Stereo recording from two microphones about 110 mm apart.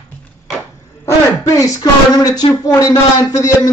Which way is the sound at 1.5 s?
35° left (ahead or behind).